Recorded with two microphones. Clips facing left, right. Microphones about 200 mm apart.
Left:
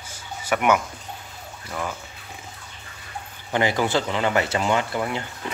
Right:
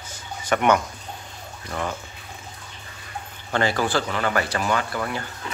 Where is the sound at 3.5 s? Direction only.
15° left (ahead or behind).